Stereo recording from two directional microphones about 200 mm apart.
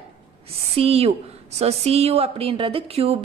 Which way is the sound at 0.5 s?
30° right (ahead or behind).